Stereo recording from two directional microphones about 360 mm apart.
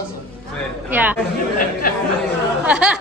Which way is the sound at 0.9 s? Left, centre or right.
Centre.